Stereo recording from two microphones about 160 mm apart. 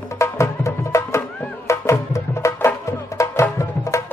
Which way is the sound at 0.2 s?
20° left (ahead or behind).